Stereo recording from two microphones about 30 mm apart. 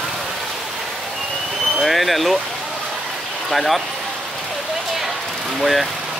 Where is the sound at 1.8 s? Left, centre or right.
Centre.